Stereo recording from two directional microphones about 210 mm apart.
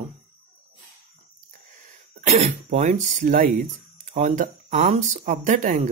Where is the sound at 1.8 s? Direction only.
30° right (ahead or behind).